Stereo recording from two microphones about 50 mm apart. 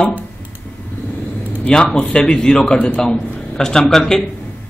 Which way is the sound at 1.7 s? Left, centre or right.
Centre.